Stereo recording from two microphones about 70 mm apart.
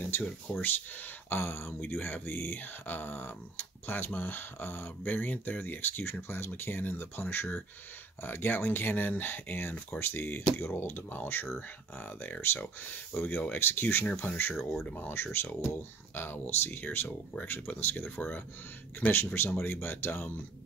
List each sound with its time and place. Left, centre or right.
0.5 s speech: left
14.6 s speech: centre
14.9 s speech: left